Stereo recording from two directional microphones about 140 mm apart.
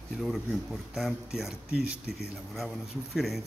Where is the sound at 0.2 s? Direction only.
Centre (ahead or behind).